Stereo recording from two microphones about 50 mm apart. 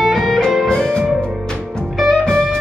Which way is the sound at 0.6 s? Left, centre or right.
Centre.